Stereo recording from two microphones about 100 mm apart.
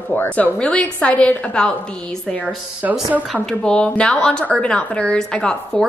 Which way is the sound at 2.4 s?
15° right (ahead or behind).